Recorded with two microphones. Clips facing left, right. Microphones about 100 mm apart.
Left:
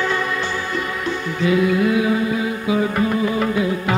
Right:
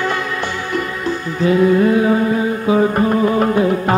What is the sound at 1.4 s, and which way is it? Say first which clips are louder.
Music: right 5 dB; 40° right (ahead or behind).